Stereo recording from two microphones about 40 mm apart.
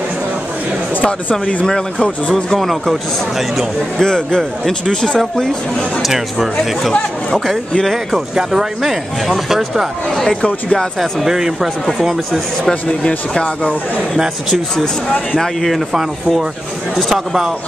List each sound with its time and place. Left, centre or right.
1.7 s speech: left
2.7 s speech: centre
4.0 s speech: centre
6.0 s speech: centre
7.8 s speech: centre
11.2 s speech: centre
13.0 s speech: left
15.4 s speech: centre
17.1 s speech: centre